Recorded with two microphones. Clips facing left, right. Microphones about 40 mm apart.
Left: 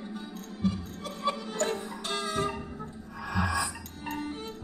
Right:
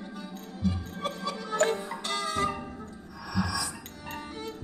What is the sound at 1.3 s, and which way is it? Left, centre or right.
Music, right.